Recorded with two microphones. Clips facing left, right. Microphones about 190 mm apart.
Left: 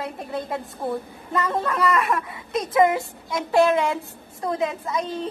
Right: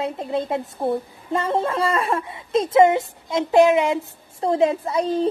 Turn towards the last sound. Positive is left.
turn(degrees=-35)  # may be behind; listen again after turning